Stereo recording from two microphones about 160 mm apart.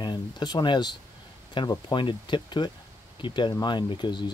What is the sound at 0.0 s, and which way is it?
Speech, 25° left (ahead or behind).